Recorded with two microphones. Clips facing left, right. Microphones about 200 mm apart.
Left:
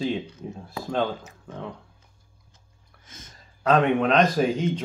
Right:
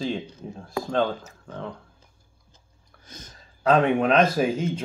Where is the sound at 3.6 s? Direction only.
Centre (ahead or behind).